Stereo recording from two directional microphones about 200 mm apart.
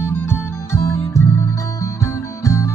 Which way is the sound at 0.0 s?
10° left (ahead or behind).